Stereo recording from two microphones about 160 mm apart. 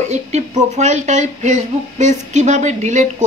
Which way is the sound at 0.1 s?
45° right (ahead or behind).